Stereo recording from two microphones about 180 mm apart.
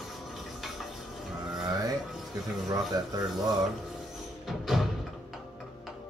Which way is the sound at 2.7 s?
20° right (ahead or behind).